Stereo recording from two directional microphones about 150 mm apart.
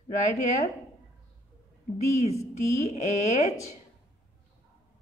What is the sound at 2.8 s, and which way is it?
Speech, 45° left (ahead or behind).